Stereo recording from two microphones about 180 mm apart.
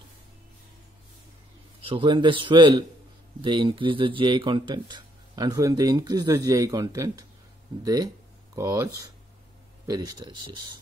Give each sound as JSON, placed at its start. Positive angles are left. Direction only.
{"t": 1.9, "sound": "speech", "side_deg": -25}